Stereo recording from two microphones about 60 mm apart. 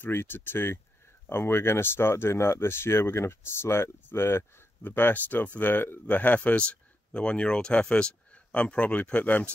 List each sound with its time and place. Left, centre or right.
0.0 s speech: left